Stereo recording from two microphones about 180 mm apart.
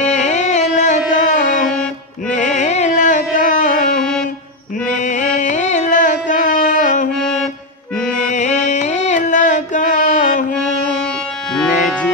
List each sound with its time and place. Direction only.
0.0 s carnatic music: 40° left (ahead or behind)
8.3 s music: 45° left (ahead or behind)